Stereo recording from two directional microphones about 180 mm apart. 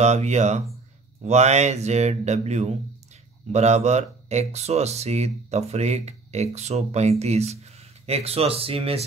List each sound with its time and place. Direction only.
0.0 s speech: 40° right (ahead or behind)